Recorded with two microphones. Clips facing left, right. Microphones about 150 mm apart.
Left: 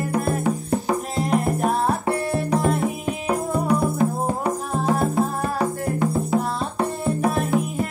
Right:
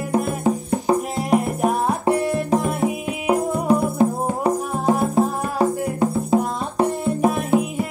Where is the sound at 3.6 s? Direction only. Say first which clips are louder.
Right 3 dB; 30° right (ahead or behind).